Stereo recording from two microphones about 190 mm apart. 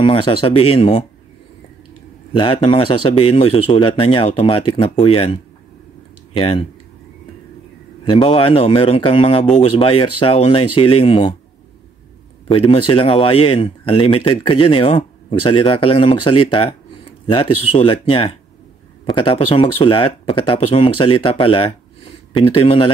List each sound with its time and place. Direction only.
0.0 s speech: 25° left (ahead or behind)
2.3 s speech: 25° left (ahead or behind)
8.0 s speech: 25° left (ahead or behind)
12.4 s speech: 30° left (ahead or behind)